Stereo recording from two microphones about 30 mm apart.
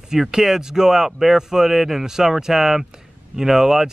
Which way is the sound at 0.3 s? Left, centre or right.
Centre.